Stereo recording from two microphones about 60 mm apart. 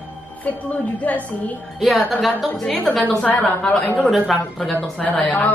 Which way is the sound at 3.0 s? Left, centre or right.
Left.